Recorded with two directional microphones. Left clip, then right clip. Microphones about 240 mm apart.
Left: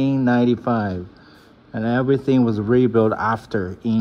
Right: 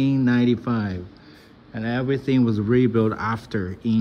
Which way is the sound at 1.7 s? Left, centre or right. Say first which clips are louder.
Left 5 dB; left.